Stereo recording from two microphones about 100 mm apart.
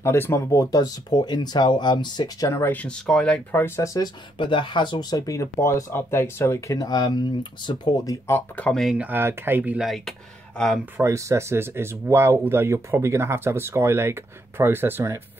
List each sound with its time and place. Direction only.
0.0 s speech: 25° left (ahead or behind); by 2.5 s 45° left (ahead or behind)
2.5 s speech: 20° left (ahead or behind)
3.5 s speech: 25° left (ahead or behind)
4.4 s speech: 55° left (ahead or behind); by 6.8 s 25° left (ahead or behind)
6.8 s speech: 45° left (ahead or behind)
8.3 s speech: 20° left (ahead or behind)
8.9 s speech: 20° right (ahead or behind)
9.8 s speech: centre (ahead or behind)
11.0 s speech: 30° right (ahead or behind)